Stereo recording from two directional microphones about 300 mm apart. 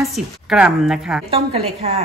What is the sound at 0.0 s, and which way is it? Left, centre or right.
A woman's voice, centre.